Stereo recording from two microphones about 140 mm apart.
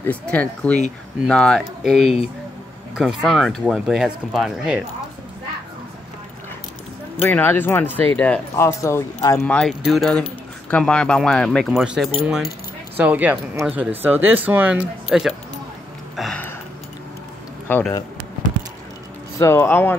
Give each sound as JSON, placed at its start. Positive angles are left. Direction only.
{"t": 0.0, "sound": "speech", "side_deg": 10}
{"t": 7.2, "sound": "speech", "side_deg": 15}
{"t": 9.5, "sound": "speech", "side_deg": 0}
{"t": 16.2, "sound": "a sound", "side_deg": 5}
{"t": 17.6, "sound": "speech", "side_deg": 15}
{"t": 19.3, "sound": "speech", "side_deg": 20}